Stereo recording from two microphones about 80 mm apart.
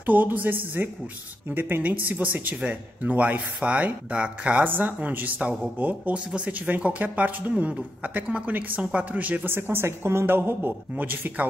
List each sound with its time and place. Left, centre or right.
0.0 s speech: right